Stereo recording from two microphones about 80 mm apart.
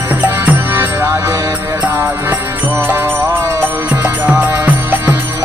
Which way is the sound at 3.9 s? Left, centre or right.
Centre.